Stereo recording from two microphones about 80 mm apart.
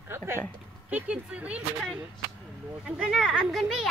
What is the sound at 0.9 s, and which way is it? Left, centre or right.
Speech, centre.